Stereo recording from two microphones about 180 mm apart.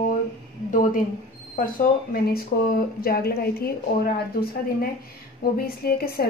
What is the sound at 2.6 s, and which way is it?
A woman's voice, 55° left (ahead or behind).